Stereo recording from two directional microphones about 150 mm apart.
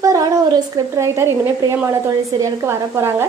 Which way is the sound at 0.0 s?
20° right (ahead or behind).